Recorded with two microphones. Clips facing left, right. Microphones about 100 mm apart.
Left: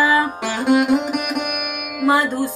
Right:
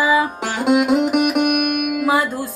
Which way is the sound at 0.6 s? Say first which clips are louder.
Right 1 dB; 60° right (ahead or behind).